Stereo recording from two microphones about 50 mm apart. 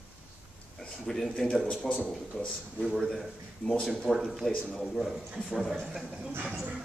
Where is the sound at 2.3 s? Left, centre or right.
Centre.